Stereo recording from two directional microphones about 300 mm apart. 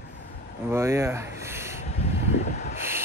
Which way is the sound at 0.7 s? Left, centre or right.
Centre.